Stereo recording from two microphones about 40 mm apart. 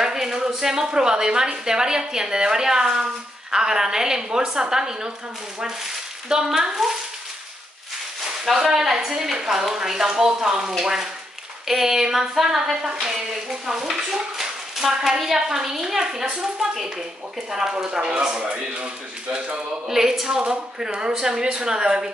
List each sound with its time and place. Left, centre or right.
0.0 s a woman's voice: centre
8.6 s a woman's voice: centre; by 19.6 s right
19.9 s speech: centre